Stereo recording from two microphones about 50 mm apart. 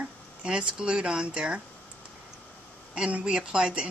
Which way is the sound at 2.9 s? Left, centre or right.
Centre.